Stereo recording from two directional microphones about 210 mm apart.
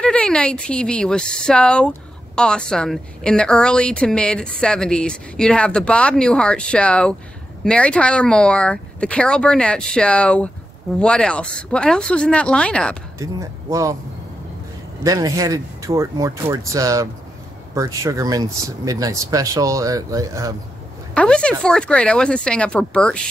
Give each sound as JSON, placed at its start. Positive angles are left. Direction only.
{"t": 0.0, "sound": "speech", "side_deg": 5}
{"t": 13.2, "sound": "speech", "side_deg": -15}
{"t": 15.0, "sound": "speech", "side_deg": -15}
{"t": 21.1, "sound": "speech", "side_deg": 5}